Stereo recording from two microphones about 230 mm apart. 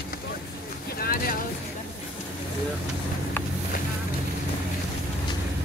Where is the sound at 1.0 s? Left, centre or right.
Left.